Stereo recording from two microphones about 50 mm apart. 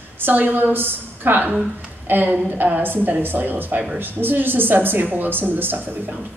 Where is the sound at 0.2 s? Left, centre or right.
Right.